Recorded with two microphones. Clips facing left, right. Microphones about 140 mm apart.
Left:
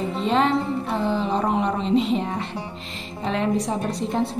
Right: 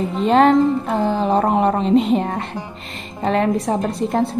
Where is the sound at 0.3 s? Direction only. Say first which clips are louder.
Right 8 dB; 45° right (ahead or behind).